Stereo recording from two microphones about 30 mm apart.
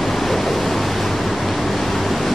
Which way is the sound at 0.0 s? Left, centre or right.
Centre.